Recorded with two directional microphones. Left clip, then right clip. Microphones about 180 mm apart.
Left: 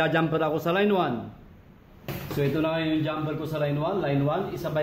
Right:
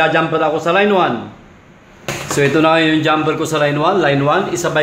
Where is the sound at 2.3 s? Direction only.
40° right (ahead or behind).